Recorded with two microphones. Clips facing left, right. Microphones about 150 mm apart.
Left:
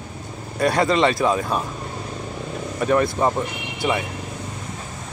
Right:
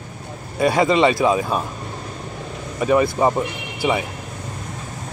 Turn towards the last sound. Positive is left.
turn(degrees=-5)  # may be behind; listen again after turning